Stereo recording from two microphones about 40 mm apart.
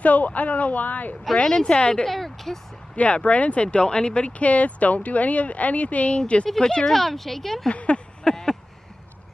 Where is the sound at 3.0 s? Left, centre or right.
Left.